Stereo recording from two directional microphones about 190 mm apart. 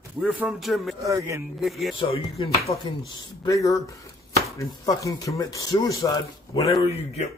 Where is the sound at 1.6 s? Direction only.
Centre (ahead or behind).